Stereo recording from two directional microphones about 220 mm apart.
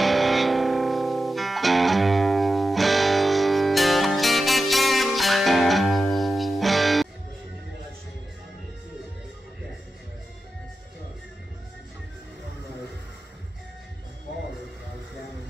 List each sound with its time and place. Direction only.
0.0 s music: centre (ahead or behind)